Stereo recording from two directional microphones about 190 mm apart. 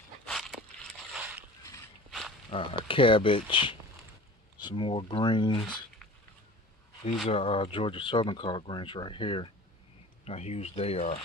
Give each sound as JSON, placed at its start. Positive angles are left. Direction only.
{"t": 0.3, "sound": "a sound", "side_deg": 0}
{"t": 2.0, "sound": "walk", "side_deg": 0}
{"t": 2.5, "sound": "speech", "side_deg": 25}
{"t": 7.2, "sound": "speech", "side_deg": 30}